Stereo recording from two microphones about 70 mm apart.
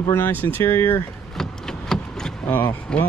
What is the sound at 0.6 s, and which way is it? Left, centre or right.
Speech, left.